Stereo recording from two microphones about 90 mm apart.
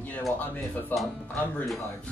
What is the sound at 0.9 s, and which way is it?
Speech, 20° left (ahead or behind).